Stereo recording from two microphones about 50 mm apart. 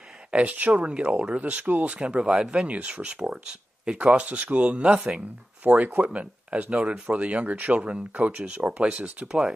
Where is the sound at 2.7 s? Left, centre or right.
Right.